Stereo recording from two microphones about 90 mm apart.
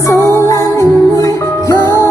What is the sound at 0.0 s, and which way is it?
Music, 35° left (ahead or behind).